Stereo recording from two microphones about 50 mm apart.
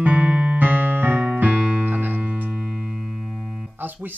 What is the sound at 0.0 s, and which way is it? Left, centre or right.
Music, right.